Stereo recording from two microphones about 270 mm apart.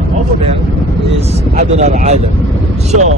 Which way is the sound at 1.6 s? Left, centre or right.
Right.